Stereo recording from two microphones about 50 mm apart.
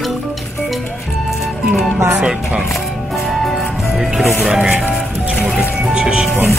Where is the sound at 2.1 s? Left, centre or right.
Centre.